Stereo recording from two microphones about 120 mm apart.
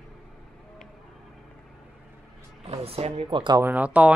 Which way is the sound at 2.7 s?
55° right (ahead or behind).